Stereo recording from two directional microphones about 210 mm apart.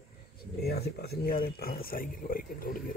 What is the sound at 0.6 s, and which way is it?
Speech, 50° left (ahead or behind).